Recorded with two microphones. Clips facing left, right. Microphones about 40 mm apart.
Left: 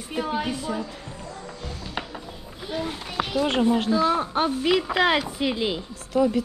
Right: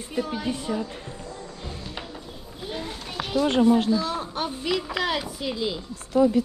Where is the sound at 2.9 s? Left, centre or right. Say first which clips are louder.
Left 4 dB; centre.